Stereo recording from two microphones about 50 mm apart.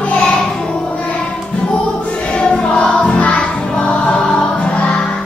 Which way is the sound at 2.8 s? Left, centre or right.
Left.